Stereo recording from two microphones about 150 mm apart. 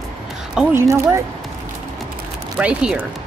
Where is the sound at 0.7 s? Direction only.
15° right (ahead or behind).